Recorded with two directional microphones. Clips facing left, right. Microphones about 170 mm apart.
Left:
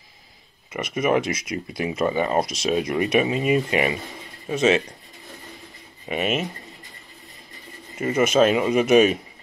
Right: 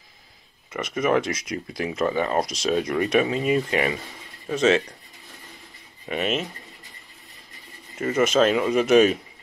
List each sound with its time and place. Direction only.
0.7 s speech: 15° left (ahead or behind)
6.0 s speech: 10° left (ahead or behind)
8.0 s speech: 10° left (ahead or behind)